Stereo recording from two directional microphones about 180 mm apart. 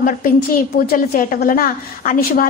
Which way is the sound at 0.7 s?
55° left (ahead or behind).